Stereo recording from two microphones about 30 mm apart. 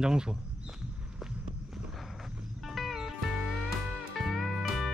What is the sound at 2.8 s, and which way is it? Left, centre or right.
Music, centre.